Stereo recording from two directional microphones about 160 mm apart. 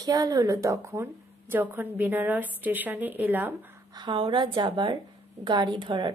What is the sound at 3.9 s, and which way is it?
A woman's voice, 30° right (ahead or behind).